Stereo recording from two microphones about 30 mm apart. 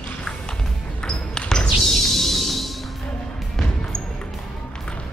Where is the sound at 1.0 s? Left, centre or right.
Left.